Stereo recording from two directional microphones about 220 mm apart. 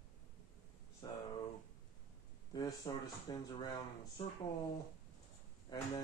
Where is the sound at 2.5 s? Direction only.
15° left (ahead or behind).